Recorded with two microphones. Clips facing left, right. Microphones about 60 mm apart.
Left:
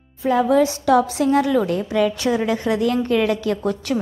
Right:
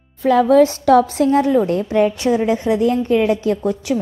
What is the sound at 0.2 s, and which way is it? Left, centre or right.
A woman's voice, right.